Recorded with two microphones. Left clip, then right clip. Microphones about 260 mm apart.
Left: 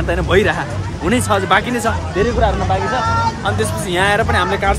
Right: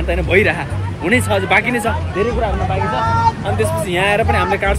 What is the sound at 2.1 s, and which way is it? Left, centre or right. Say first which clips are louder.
Speech: left 4 dB; left.